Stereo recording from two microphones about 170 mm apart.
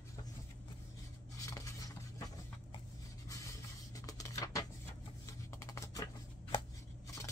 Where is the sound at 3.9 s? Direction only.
20° left (ahead or behind).